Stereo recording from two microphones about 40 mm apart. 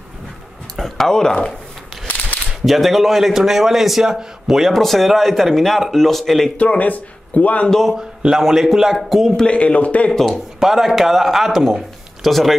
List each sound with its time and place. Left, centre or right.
0.7 s speech: centre
2.6 s a man's voice: centre
6.5 s speech: left
7.8 s a man's voice: centre
9.6 s speech: left
10.1 s speech: centre
10.6 s a man's voice: centre